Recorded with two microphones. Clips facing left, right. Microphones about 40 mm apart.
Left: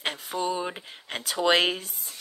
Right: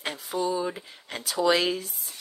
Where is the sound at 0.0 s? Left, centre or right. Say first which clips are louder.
Even; left.